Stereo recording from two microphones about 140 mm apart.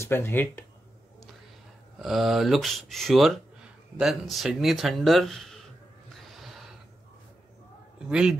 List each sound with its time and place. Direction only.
0.0 s speech: 15° left (ahead or behind)
2.0 s speech: centre (ahead or behind)
6.1 s a sound: centre (ahead or behind)
8.1 s speech: 5° right (ahead or behind)